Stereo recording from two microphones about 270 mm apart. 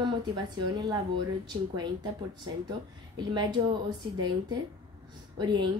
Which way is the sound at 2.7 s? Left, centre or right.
Centre.